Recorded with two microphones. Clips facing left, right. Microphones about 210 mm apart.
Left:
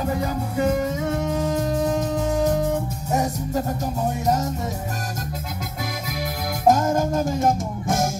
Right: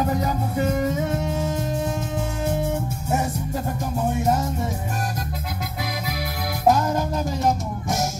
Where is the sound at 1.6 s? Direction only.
40° left (ahead or behind).